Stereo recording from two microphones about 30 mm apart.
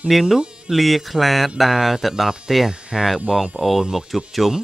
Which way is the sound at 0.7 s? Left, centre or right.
Centre.